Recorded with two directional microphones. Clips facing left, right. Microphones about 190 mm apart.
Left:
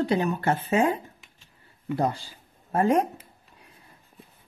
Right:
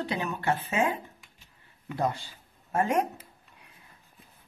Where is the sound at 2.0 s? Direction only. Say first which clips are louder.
Left 1 dB; 35° left (ahead or behind).